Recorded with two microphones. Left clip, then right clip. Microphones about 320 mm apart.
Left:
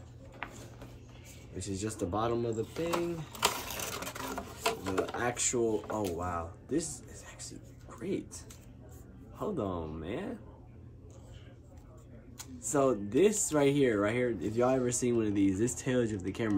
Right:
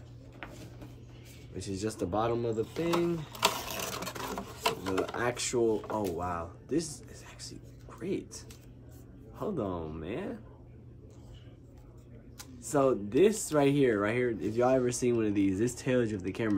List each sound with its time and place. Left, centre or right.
0.4 s a sound: centre
1.6 s speech: centre
12.4 s speech: centre